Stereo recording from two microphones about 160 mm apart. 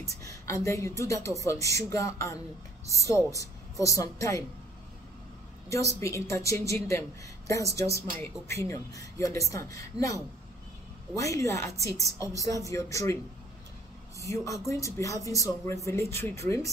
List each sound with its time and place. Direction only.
0.2 s speech: 20° left (ahead or behind)
5.9 s speech: 20° left (ahead or behind)